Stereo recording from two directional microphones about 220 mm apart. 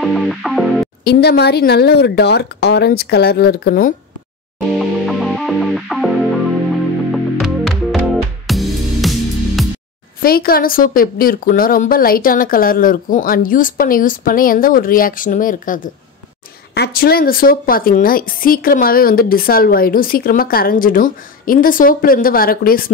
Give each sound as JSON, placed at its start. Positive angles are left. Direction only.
{"t": 0.0, "sound": "music", "side_deg": 0}
{"t": 1.0, "sound": "speech", "side_deg": 45}
{"t": 4.7, "sound": "music", "side_deg": 0}
{"t": 10.2, "sound": "a woman's voice", "side_deg": 40}